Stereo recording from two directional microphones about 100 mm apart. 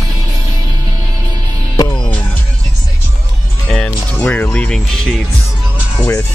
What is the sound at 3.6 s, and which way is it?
Music, 10° left (ahead or behind).